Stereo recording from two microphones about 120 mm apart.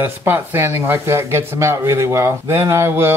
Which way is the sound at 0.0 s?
20° right (ahead or behind).